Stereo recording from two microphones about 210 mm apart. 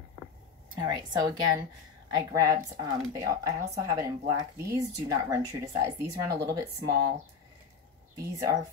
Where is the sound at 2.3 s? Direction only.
15° right (ahead or behind).